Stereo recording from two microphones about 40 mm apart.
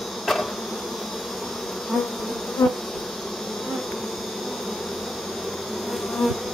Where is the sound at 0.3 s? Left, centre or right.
Centre.